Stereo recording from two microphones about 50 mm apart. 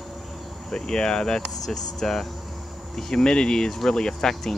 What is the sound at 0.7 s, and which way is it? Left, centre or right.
Speech, centre.